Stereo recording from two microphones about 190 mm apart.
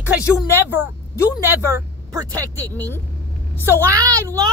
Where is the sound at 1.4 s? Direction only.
10° right (ahead or behind).